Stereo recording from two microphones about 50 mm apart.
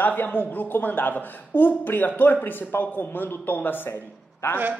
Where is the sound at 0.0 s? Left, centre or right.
Left.